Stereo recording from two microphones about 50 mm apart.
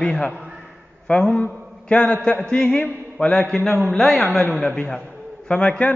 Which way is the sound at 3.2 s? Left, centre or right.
Centre.